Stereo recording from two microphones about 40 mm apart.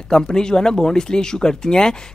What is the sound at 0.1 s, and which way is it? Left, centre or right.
Speech, centre.